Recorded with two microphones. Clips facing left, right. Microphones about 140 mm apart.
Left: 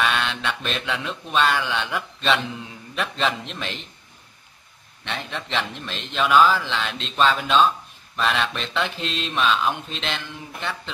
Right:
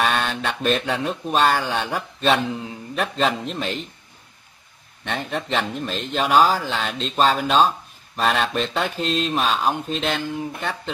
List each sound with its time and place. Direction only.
0.0 s speech: 40° right (ahead or behind)
5.0 s speech: 45° right (ahead or behind)